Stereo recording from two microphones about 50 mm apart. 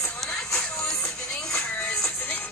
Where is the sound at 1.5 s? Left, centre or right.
Centre.